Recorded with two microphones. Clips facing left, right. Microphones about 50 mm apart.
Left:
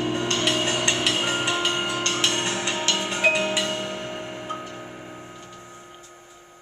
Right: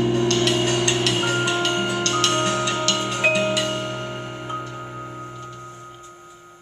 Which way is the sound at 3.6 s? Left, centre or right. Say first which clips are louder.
Right 2 dB; centre.